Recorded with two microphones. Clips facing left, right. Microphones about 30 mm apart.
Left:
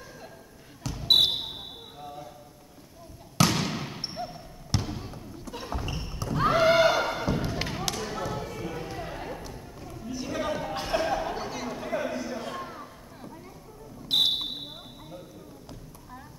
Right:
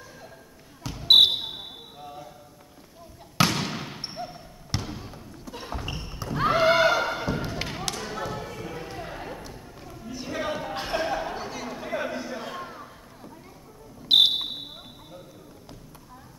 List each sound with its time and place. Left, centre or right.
0.8 s basketball bounce: centre
1.3 s basketball bounce: centre
3.4 s basketball bounce: centre
12.0 s a sound: right
12.3 s a sound: centre
14.0 s basketball bounce: right